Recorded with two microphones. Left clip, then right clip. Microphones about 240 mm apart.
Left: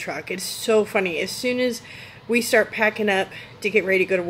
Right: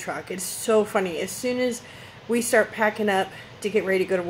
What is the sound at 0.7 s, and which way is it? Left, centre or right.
Speech, centre.